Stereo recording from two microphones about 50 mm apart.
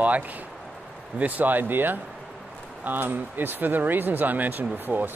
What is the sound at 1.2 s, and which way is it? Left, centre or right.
Speech, right.